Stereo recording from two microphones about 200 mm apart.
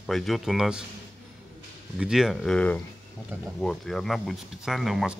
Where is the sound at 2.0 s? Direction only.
5° right (ahead or behind).